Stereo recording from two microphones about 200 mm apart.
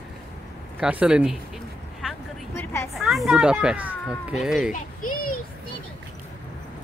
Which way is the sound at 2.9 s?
Centre (ahead or behind).